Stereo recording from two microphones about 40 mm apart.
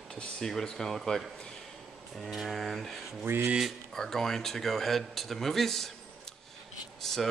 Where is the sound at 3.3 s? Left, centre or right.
Right.